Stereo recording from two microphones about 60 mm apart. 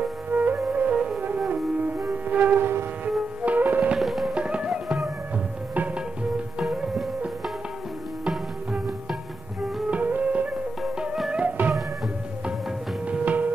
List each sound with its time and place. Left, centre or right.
0.3 s music: right
0.7 s flute: centre
1.5 s music: right
4.0 s music: centre
4.3 s music: centre
6.6 s music: centre
9.8 s music: right
13.0 s music: right